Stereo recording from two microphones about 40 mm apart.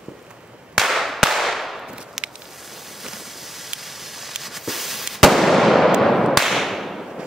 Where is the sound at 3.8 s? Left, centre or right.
Centre.